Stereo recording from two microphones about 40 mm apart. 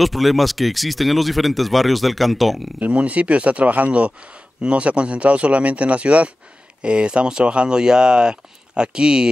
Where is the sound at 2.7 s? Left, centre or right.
Right.